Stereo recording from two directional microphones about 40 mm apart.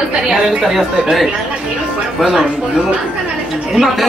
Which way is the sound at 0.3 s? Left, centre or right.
Centre.